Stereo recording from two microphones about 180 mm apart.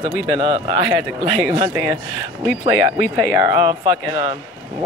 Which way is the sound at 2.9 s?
55° left (ahead or behind).